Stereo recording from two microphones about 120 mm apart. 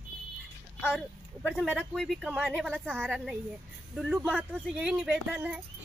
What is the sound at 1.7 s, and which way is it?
Speech, centre (ahead or behind).